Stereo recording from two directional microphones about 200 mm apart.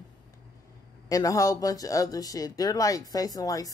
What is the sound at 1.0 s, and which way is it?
A woman's voice, 15° left (ahead or behind).